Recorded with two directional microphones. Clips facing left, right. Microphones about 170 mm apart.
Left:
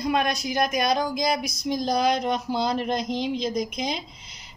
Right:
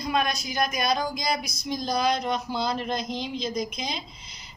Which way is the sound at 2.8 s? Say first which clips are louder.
Left 4 dB; 15° left (ahead or behind).